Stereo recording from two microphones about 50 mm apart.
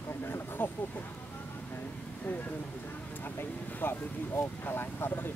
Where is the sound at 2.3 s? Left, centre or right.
Left.